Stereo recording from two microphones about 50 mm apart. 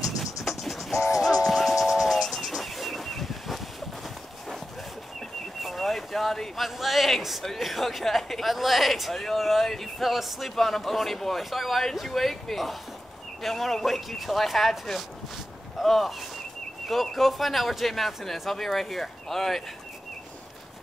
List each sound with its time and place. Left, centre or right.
0.0 s music: centre
0.9 s music: left
1.2 s music: centre
2.2 s bird: centre
5.6 s speech: centre